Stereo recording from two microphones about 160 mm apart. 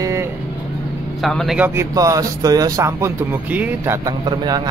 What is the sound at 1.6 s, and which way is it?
A man's voice, 20° right (ahead or behind).